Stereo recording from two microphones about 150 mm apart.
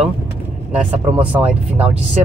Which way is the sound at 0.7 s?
10° right (ahead or behind).